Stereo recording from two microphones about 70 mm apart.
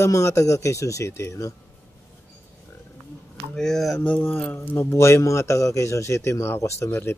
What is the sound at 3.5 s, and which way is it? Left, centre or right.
Speech, centre.